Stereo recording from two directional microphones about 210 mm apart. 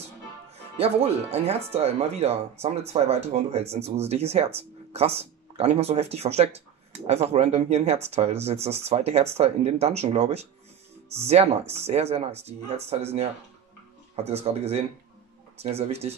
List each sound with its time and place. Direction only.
0.7 s speech: 30° right (ahead or behind)